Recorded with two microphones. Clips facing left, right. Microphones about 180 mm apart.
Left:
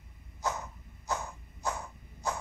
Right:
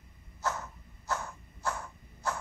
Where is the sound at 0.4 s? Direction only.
15° left (ahead or behind).